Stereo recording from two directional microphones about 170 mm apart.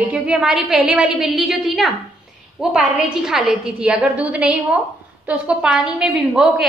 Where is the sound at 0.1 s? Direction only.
5° right (ahead or behind).